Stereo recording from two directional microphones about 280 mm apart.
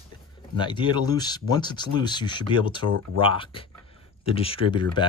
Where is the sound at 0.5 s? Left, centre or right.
Centre.